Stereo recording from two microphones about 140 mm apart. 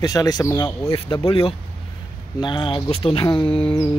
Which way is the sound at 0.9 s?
40° left (ahead or behind).